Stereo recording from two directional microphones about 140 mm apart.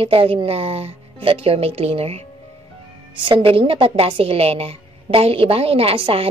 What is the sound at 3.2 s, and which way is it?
A woman's voice, 35° right (ahead or behind).